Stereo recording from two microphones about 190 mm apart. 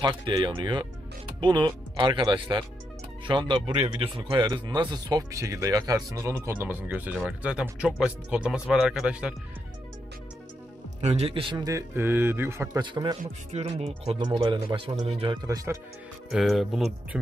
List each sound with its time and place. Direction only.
0.0 s speech: 25° right (ahead or behind); by 9.3 s 5° right (ahead or behind)
11.0 s speech: 35° right (ahead or behind); by 12.8 s 15° right (ahead or behind)
12.8 s speech: 25° right (ahead or behind)
13.2 s speech: 35° right (ahead or behind); by 15.8 s 15° right (ahead or behind)
16.3 s speech: centre (ahead or behind)